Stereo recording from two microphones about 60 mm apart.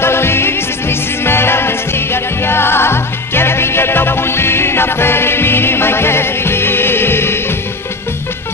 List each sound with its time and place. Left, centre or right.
0.0 s music: left